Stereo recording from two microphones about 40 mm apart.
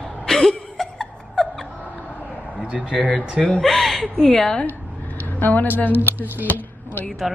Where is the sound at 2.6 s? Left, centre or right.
Right.